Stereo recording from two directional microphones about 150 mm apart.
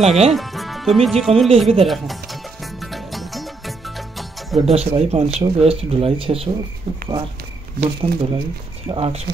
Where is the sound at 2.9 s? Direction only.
Centre (ahead or behind).